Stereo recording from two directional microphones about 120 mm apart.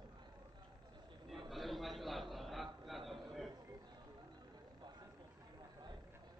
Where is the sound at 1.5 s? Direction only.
Centre (ahead or behind).